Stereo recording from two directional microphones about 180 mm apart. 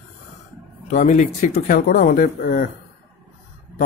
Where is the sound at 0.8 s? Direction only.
45° left (ahead or behind).